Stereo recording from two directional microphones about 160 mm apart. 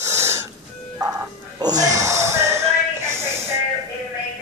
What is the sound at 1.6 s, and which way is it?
Speech, 25° right (ahead or behind).